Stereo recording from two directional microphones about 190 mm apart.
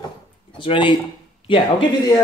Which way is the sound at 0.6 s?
25° left (ahead or behind).